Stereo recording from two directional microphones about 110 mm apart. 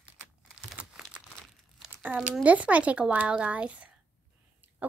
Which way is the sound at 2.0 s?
15° right (ahead or behind).